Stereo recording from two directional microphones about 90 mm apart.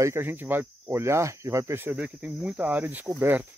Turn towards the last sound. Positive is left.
turn(degrees=-25)  # may be behind; listen again after turning